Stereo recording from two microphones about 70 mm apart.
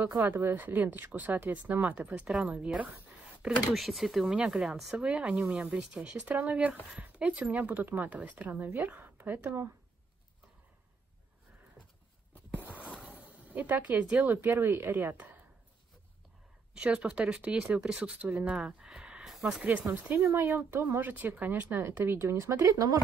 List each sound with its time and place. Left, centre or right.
0.1 s speech: right
3.7 s speech: centre
5.0 s speech: centre
12.5 s a sound: right
12.8 s a sound: centre
13.1 s speech: centre
16.7 s speech: centre
19.9 s speech: right